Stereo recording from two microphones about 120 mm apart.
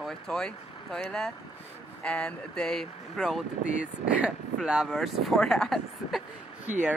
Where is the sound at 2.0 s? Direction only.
10° left (ahead or behind).